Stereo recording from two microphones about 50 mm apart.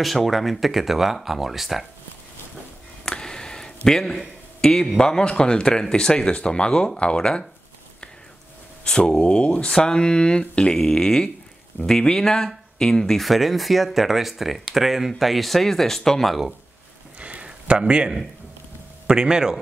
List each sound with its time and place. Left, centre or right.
0.0 s speech: centre
3.1 s a sound: centre
4.6 s speech: centre
8.8 s speech: centre
17.2 s a sound: right
19.0 s speech: centre